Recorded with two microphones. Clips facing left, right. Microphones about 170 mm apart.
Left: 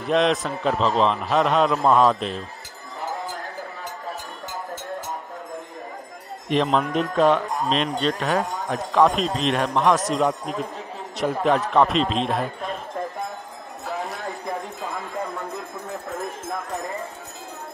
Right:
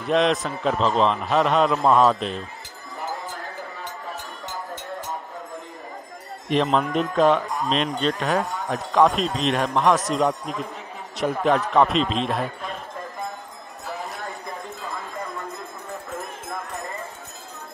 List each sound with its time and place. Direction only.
0.0 s a man's voice: centre (ahead or behind)
6.5 s a man's voice: centre (ahead or behind)